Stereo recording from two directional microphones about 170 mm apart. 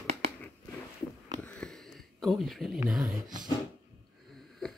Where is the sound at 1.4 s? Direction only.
5° left (ahead or behind).